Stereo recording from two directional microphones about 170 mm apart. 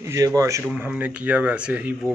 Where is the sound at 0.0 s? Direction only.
20° right (ahead or behind).